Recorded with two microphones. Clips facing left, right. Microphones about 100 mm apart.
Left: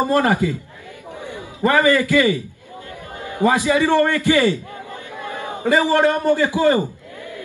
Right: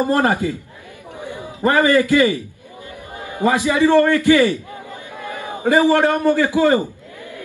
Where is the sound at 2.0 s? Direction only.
20° right (ahead or behind).